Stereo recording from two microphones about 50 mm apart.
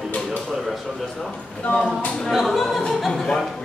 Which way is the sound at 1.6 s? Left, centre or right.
Left.